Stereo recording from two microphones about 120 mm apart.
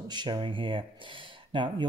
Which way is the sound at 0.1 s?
40° right (ahead or behind).